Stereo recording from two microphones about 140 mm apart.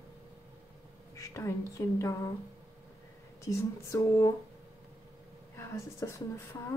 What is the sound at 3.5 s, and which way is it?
Speech, 20° left (ahead or behind).